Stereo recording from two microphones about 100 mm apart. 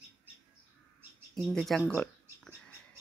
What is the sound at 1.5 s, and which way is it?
Speech, 5° left (ahead or behind).